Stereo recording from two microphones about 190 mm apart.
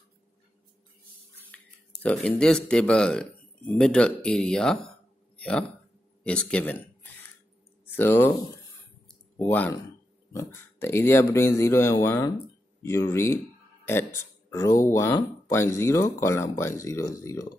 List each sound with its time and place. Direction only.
2.0 s speech: 5° left (ahead or behind)
9.4 s speech: 10° left (ahead or behind)